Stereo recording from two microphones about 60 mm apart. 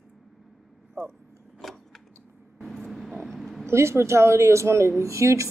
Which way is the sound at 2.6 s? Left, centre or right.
Centre.